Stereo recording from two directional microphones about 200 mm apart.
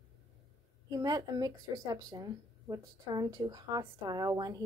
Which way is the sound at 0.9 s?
20° right (ahead or behind).